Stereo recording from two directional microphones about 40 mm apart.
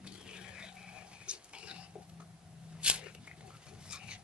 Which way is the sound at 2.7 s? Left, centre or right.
Right.